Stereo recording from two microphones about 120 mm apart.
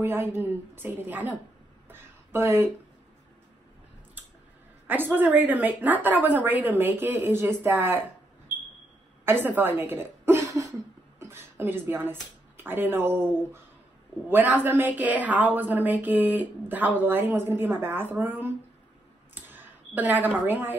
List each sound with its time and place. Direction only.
0.0 s a woman's voice: 20° right (ahead or behind)
1.9 s a sound: 20° right (ahead or behind)
4.8 s a woman's voice: 15° right (ahead or behind)
9.2 s speech: 20° right (ahead or behind)
14.3 s a woman's voice: 15° right (ahead or behind)
19.3 s a sound: 15° right (ahead or behind)